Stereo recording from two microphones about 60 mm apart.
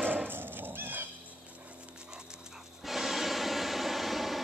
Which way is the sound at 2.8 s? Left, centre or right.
Centre.